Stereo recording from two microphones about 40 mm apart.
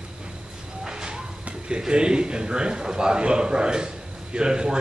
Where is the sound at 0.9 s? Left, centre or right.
Centre.